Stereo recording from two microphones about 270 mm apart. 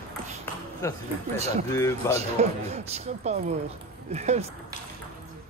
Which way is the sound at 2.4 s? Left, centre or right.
Right.